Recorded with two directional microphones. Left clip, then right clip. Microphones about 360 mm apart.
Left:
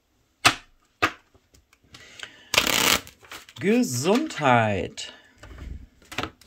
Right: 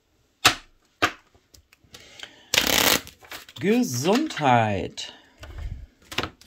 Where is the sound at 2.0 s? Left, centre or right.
Centre.